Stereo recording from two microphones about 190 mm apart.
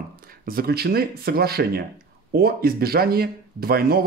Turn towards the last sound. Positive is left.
turn(degrees=-55)  # may be behind; listen again after turning